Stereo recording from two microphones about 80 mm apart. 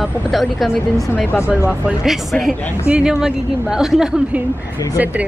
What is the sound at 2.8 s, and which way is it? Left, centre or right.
Speech, centre.